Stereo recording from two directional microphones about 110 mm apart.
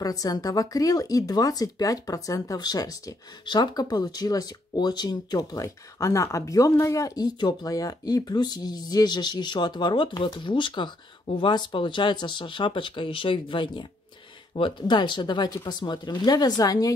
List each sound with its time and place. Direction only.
0.0 s speech: 35° left (ahead or behind)